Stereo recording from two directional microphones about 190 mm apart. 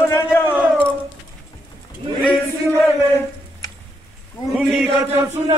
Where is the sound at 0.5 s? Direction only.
10° right (ahead or behind).